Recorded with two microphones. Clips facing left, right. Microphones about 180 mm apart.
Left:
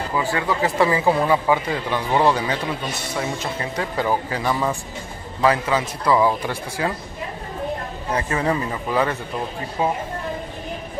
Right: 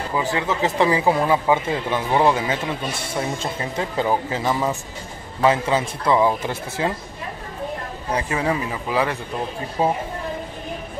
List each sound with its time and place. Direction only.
0.2 s speech: 20° right (ahead or behind)
8.1 s speech: 10° right (ahead or behind)
9.8 s a woman's voice: 35° right (ahead or behind)